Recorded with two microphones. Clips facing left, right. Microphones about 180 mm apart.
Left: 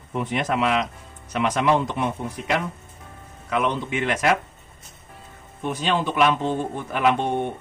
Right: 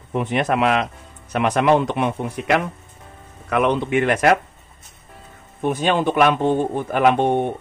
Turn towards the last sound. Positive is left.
turn(degrees=-55)  # may be behind; listen again after turning